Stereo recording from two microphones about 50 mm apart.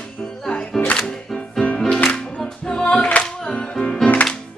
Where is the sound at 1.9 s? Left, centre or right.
Centre.